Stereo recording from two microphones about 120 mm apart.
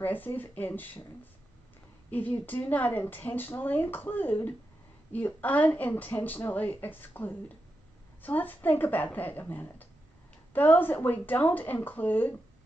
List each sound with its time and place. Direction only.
0.0 s speech: 15° left (ahead or behind)
2.0 s speech: 15° left (ahead or behind)